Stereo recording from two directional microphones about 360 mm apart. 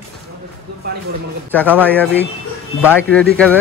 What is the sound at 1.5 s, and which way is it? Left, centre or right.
Speech, centre.